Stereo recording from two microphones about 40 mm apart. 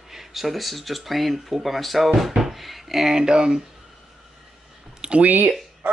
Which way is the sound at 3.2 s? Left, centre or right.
Centre.